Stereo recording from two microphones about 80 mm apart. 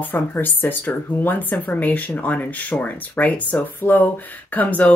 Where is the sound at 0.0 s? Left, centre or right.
Left.